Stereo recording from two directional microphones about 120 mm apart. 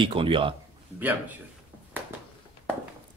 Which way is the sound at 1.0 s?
15° right (ahead or behind).